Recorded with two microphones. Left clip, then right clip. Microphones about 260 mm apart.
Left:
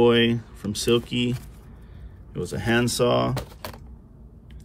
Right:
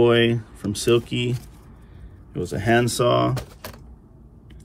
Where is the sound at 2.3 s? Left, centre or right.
Centre.